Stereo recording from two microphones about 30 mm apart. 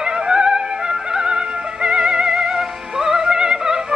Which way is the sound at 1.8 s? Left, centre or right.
Right.